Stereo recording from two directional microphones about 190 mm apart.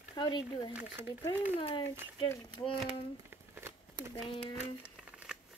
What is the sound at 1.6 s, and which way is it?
A child's voice, 25° left (ahead or behind).